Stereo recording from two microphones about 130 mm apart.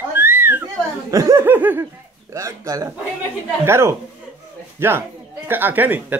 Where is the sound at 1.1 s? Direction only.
25° right (ahead or behind).